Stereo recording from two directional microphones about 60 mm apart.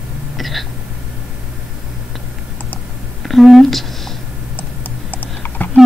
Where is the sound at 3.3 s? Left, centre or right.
Centre.